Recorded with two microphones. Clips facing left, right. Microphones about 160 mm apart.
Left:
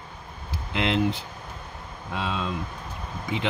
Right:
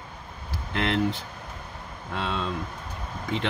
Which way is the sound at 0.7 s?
15° left (ahead or behind).